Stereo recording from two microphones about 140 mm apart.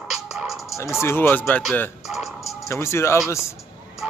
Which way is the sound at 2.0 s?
Centre (ahead or behind).